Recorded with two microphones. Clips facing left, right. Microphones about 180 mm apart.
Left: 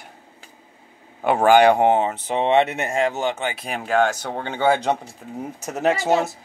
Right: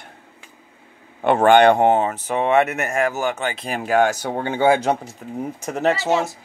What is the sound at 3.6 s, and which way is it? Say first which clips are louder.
Speech: right 2 dB; centre (ahead or behind).